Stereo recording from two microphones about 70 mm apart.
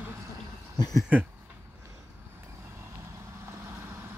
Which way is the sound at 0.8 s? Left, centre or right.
Left.